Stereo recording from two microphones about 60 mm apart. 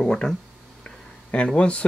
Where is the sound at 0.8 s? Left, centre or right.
Centre.